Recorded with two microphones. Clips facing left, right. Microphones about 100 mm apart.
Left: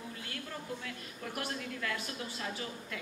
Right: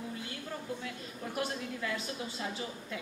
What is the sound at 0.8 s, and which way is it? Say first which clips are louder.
A woman's voice: right 2 dB; 20° right (ahead or behind).